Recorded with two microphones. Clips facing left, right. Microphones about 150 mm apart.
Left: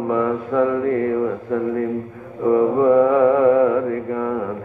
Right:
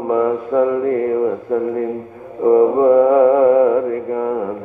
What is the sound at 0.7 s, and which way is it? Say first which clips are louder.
Mantra: right 2 dB; 25° right (ahead or behind).